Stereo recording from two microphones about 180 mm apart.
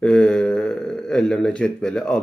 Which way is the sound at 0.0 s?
5° left (ahead or behind).